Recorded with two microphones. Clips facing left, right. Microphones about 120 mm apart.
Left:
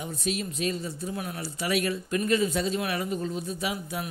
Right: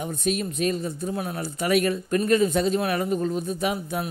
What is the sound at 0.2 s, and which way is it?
Speech, 50° right (ahead or behind).